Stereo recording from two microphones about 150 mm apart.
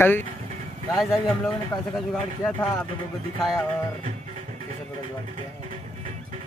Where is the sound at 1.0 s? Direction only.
Centre (ahead or behind).